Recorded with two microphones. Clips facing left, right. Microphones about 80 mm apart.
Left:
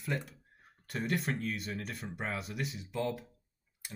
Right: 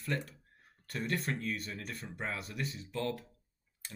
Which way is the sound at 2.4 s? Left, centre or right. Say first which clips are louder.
Left 2 dB; centre.